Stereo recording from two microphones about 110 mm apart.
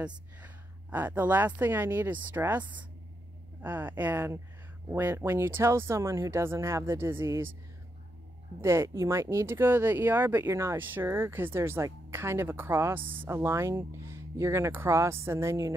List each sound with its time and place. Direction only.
0.0 s speech: 15° right (ahead or behind)
3.6 s speech: 20° right (ahead or behind)
8.5 s speech: 25° right (ahead or behind)